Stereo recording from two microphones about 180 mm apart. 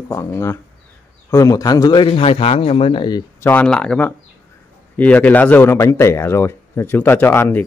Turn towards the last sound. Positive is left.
turn(degrees=10)  # may be behind; listen again after turning